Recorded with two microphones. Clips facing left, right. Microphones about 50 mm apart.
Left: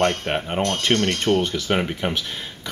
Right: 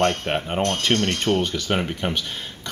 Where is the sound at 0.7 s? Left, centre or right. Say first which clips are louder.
Left 2 dB; centre.